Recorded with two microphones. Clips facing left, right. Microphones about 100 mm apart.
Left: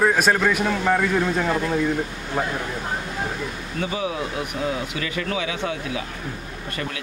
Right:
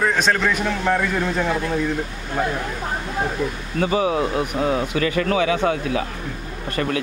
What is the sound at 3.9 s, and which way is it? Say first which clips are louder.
Speech: right 8 dB; 50° right (ahead or behind).